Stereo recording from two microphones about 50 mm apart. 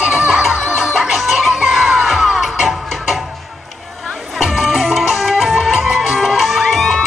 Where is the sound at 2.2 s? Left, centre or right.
Centre.